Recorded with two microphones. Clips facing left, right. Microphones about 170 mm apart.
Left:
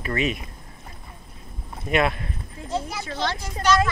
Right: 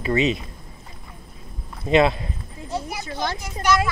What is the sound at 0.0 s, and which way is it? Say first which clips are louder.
Speech: right 5 dB; 25° right (ahead or behind).